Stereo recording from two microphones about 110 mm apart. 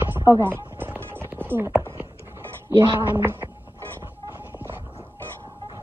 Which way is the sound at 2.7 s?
40° right (ahead or behind).